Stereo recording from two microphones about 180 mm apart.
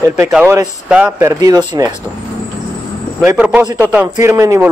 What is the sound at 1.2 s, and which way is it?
Speech, 20° right (ahead or behind).